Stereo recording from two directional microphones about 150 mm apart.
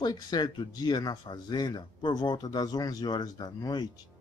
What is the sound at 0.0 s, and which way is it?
Speech, 25° left (ahead or behind).